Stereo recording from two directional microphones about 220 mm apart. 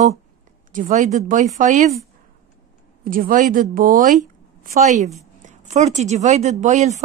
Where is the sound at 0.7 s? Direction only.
35° right (ahead or behind).